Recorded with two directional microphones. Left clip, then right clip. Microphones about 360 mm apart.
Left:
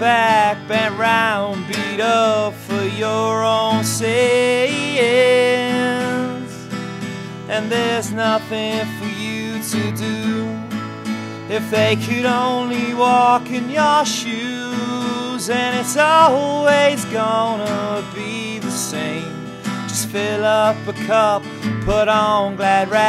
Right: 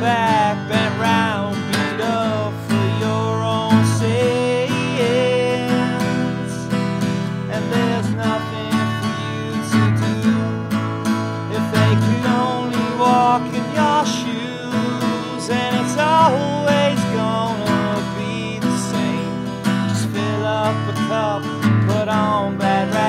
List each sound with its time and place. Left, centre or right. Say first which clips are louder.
0.0 s music: left 3 dB; left
13.0 s music: left 2 dB; left
15.5 s music: left 2 dB; left
20.2 s music: left 6 dB; left